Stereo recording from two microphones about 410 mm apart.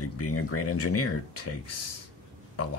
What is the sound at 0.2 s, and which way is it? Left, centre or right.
Speech, left.